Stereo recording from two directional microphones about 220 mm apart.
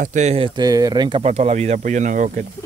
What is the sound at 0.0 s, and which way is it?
Speech, 30° right (ahead or behind).